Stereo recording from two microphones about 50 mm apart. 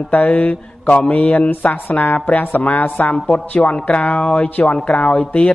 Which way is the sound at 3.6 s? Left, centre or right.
Left.